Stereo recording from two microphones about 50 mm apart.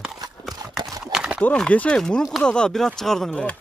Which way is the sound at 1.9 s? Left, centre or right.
Centre.